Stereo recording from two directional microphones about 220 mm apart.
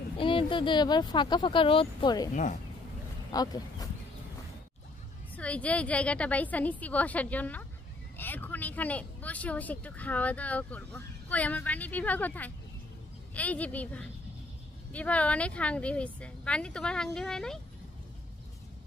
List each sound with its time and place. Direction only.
0.2 s speech: 25° left (ahead or behind)
3.3 s speech: 15° left (ahead or behind)
5.3 s a woman's voice: 5° left (ahead or behind)